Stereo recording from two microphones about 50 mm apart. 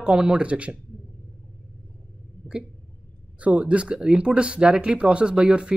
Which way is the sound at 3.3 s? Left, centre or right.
Right.